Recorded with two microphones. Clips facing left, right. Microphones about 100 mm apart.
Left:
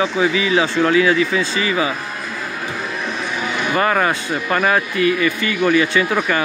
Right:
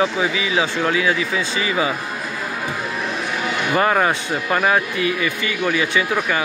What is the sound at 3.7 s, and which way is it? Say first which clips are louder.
Speech: even; 15° right (ahead or behind).